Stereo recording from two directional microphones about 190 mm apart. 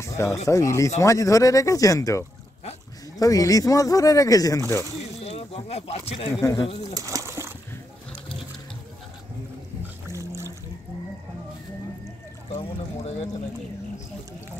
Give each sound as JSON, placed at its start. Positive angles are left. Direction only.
{"t": 0.0, "sound": "a sound", "side_deg": 15}
{"t": 0.5, "sound": "speech", "side_deg": 15}
{"t": 5.2, "sound": "speech", "side_deg": 30}
{"t": 6.4, "sound": "speech", "side_deg": 15}
{"t": 6.9, "sound": "bird", "side_deg": -20}
{"t": 10.0, "sound": "a sound", "side_deg": -15}
{"t": 12.5, "sound": "speech", "side_deg": 35}